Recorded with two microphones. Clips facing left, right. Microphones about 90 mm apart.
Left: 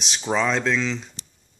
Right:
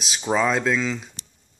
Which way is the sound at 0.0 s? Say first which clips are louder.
Right 1 dB; 5° right (ahead or behind).